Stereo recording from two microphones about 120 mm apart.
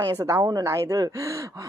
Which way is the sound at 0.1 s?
30° right (ahead or behind).